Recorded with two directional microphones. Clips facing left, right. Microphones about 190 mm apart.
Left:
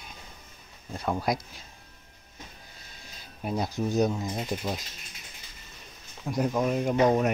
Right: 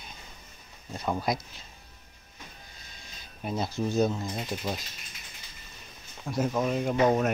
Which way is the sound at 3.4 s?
15° left (ahead or behind).